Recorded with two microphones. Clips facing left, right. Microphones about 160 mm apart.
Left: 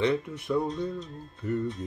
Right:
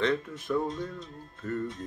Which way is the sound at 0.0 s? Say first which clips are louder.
Left 2 dB; 15° left (ahead or behind).